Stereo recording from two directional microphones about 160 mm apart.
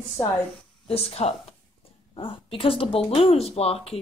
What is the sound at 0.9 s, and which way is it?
Speech, 40° left (ahead or behind).